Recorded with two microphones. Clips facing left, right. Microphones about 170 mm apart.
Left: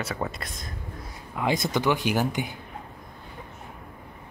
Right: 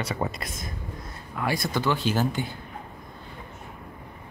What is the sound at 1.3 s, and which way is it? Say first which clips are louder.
Speech: left 2 dB; 20° left (ahead or behind).